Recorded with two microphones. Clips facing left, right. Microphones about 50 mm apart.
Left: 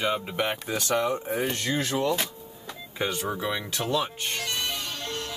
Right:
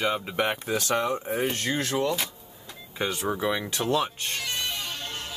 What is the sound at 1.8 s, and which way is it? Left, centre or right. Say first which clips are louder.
Speech: even; centre.